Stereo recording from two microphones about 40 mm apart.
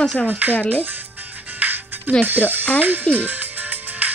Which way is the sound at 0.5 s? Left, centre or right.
Left.